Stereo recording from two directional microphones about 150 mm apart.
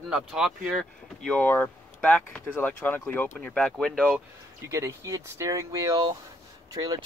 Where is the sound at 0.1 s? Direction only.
5° right (ahead or behind).